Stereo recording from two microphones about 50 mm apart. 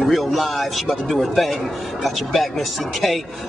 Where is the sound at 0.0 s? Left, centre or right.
Centre.